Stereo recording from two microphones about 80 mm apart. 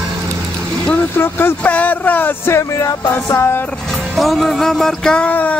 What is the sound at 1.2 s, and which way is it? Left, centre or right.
Speech, left.